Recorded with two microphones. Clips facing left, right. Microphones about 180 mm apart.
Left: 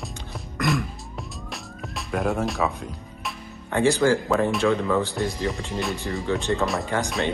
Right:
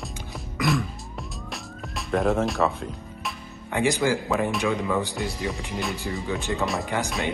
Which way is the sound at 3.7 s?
15° right (ahead or behind).